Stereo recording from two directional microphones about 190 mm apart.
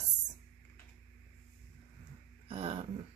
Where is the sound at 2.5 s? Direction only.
30° right (ahead or behind).